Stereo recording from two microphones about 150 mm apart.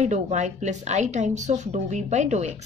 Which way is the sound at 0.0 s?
50° right (ahead or behind).